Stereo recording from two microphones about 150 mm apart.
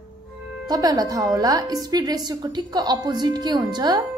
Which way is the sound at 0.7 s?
25° right (ahead or behind).